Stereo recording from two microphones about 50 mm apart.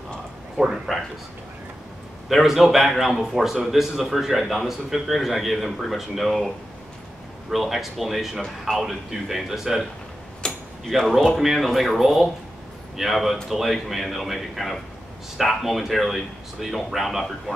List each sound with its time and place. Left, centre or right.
0.6 s speech: centre
2.2 s a man's voice: centre
7.5 s a man's voice: centre
10.4 s a sound: centre
10.9 s speech: centre
11.3 s a man's voice: centre